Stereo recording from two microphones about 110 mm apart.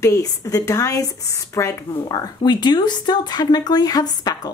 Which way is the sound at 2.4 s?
40° left (ahead or behind).